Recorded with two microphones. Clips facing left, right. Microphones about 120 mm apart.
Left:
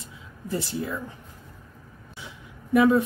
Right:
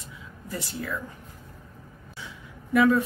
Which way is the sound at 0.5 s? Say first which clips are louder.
Left 5 dB; 25° left (ahead or behind).